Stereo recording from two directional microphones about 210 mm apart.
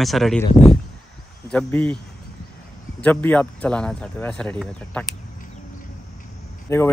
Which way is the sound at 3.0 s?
5° left (ahead or behind).